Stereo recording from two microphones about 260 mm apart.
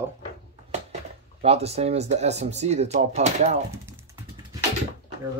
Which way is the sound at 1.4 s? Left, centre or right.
Right.